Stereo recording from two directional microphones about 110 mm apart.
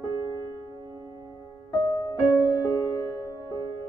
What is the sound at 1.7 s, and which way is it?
Music, 35° left (ahead or behind).